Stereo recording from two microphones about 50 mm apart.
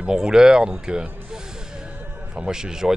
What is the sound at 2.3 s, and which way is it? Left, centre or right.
Speech, centre.